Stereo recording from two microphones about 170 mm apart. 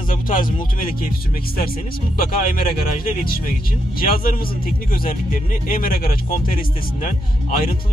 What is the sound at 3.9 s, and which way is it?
A man's voice, 60° left (ahead or behind).